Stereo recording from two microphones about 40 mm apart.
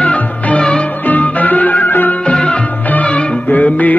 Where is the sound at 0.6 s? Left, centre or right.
Left.